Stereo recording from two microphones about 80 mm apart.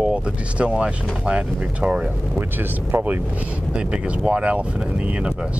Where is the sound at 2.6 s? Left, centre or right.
Right.